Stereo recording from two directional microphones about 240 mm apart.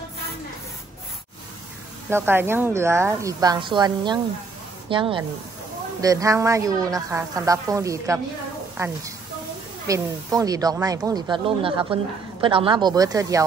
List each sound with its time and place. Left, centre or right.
2.0 s speech: centre